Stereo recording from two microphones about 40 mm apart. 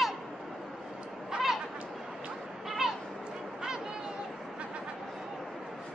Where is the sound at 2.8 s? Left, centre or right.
Centre.